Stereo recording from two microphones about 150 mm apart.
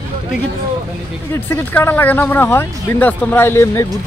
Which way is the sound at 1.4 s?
15° left (ahead or behind).